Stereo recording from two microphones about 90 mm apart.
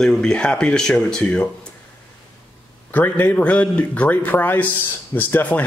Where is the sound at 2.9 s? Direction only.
20° left (ahead or behind).